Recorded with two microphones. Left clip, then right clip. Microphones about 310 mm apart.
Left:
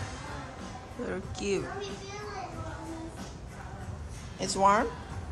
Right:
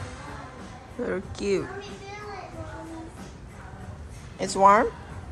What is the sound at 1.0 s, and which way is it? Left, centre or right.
Speech, centre.